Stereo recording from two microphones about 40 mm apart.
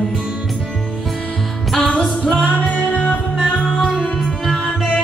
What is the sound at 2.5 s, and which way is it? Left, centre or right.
Music, left.